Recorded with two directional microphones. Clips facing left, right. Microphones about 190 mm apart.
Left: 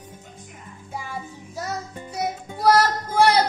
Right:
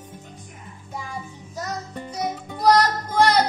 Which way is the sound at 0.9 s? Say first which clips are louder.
Left 1 dB; 10° left (ahead or behind).